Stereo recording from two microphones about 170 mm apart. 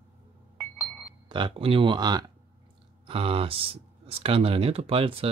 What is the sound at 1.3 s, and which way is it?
Speech, 30° right (ahead or behind).